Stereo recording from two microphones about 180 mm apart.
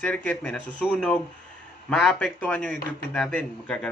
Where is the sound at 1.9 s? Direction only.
5° left (ahead or behind).